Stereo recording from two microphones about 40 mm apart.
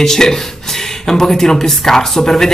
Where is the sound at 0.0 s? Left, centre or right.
Centre.